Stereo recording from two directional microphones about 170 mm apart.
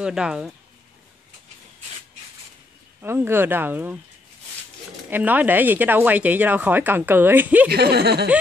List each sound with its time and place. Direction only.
0.0 s speech: 5° right (ahead or behind)
3.0 s speech: 15° right (ahead or behind)
5.1 s speech: 10° right (ahead or behind)
7.7 s speech: 75° right (ahead or behind)